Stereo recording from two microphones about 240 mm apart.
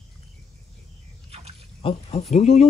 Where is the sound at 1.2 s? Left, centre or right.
Right.